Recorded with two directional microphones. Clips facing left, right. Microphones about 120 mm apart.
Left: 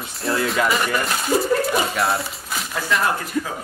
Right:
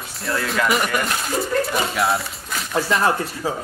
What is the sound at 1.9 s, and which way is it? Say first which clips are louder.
Speech: right 1 dB; centre (ahead or behind).